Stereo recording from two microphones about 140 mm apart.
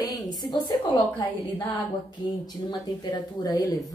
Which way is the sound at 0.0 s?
25° left (ahead or behind).